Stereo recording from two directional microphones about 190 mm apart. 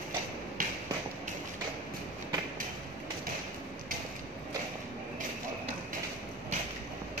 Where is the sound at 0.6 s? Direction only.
45° right (ahead or behind).